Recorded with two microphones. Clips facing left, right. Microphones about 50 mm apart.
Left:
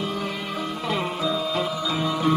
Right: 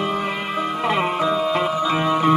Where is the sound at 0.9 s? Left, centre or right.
Right.